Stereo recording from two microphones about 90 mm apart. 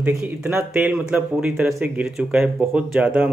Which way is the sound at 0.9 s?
10° right (ahead or behind).